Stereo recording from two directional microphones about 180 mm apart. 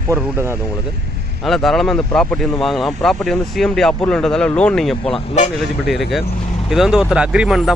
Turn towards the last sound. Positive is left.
turn(degrees=0)  # may be behind; listen again after turning